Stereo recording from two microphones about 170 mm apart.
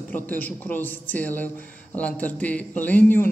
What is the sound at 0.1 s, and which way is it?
A man's voice, 10° left (ahead or behind).